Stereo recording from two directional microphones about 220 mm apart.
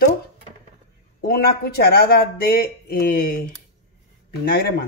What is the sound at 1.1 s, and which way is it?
Speech, 45° left (ahead or behind).